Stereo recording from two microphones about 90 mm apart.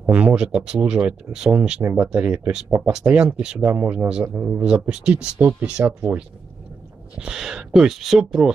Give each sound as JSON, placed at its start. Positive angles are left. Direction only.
{"t": 0.0, "sound": "speech", "side_deg": -15}
{"t": 7.2, "sound": "speech", "side_deg": -10}